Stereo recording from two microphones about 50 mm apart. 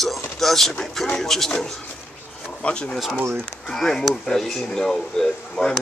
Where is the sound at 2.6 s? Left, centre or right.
Centre.